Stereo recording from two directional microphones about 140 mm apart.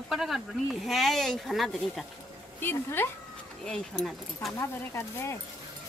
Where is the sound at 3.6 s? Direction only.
5° left (ahead or behind).